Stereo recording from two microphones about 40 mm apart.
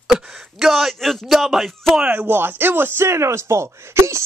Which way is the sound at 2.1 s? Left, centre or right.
Right.